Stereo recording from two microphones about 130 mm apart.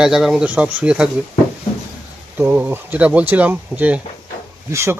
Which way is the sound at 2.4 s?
15° right (ahead or behind).